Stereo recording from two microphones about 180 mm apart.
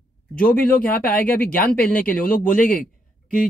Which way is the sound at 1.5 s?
50° left (ahead or behind).